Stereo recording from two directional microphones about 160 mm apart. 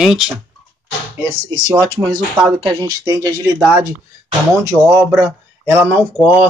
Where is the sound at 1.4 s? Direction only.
25° right (ahead or behind).